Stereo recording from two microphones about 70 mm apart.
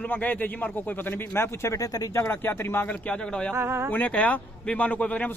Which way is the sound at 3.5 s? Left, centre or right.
Right.